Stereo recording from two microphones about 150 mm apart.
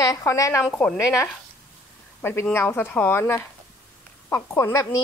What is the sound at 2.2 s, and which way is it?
A woman's voice, 15° left (ahead or behind).